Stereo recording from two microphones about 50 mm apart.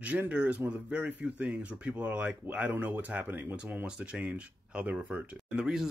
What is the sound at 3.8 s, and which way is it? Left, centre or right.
Speech, right.